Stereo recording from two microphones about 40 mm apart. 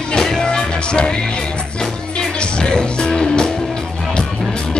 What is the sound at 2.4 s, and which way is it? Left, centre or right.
Music, centre.